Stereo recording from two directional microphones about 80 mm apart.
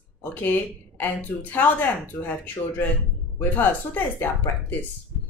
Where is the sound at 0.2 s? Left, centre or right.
Left.